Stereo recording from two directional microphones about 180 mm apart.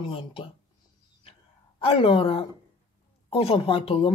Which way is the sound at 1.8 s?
30° left (ahead or behind).